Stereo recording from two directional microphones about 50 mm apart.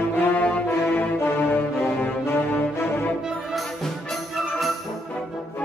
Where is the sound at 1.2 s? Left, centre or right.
Left.